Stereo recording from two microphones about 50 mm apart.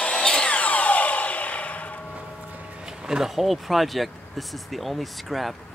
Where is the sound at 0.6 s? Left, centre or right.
Left.